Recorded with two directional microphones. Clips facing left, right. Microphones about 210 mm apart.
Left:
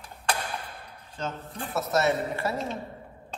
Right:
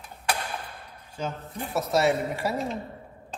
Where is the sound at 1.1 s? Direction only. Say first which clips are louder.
Right 1 dB; 10° right (ahead or behind).